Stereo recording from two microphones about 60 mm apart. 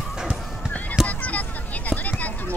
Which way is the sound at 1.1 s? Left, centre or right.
Left.